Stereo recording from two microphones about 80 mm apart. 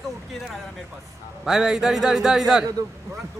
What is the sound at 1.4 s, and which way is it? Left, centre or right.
A man's voice, centre.